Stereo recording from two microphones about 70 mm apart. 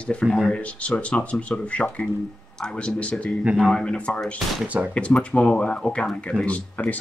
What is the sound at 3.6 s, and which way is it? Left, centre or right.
Speech, centre.